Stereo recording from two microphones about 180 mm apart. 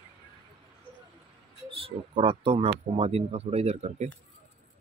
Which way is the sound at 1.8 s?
30° right (ahead or behind).